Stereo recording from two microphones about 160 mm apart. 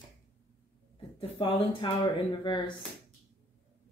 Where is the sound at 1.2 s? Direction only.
35° left (ahead or behind).